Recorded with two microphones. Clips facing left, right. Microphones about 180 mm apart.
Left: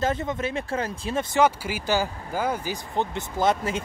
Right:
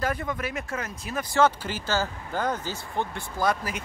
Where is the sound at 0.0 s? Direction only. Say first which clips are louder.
Left 3 dB; 25° left (ahead or behind).